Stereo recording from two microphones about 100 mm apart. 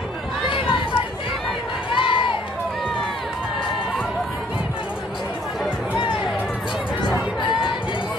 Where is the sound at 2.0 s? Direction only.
60° left (ahead or behind).